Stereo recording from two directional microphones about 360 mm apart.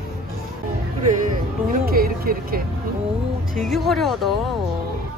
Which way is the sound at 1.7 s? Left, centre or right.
Right.